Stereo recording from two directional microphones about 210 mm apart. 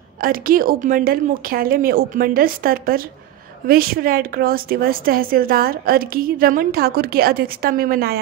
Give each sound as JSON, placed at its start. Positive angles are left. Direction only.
{"t": 0.2, "sound": "a woman's voice", "side_deg": -45}